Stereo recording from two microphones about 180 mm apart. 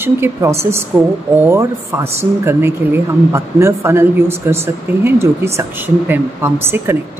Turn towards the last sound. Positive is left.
turn(degrees=-15)  # may be behind; listen again after turning